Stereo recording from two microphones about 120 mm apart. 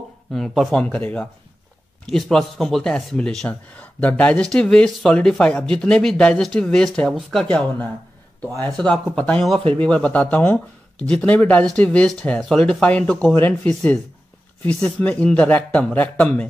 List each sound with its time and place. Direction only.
0.3 s a man's voice: 5° left (ahead or behind)
8.6 s a man's voice: 5° left (ahead or behind)
14.7 s a man's voice: 10° left (ahead or behind)